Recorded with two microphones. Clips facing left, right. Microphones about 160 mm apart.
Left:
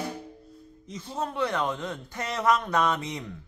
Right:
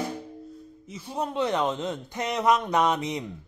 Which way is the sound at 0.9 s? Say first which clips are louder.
Right 2 dB; 10° right (ahead or behind).